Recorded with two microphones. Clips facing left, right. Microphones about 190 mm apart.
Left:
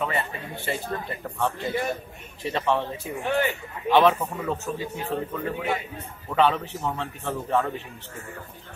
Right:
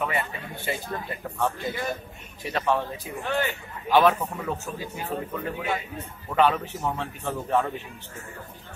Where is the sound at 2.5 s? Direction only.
5° right (ahead or behind).